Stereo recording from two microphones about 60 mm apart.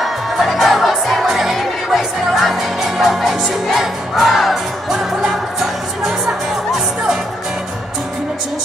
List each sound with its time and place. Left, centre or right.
0.0 s music: centre